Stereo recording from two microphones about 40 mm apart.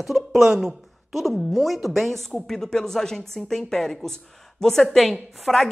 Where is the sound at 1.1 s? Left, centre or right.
Centre.